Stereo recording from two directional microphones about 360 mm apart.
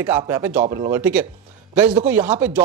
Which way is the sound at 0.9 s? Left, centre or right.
Centre.